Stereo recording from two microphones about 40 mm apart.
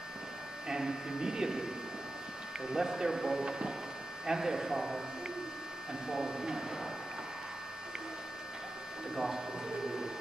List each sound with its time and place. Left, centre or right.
0.7 s speech: centre
2.7 s speech: centre
3.4 s a sound: right
4.3 s speech: centre
6.0 s speech: centre
9.1 s speech: centre